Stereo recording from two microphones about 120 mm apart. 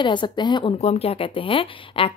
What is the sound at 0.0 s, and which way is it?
Speech, 40° left (ahead or behind).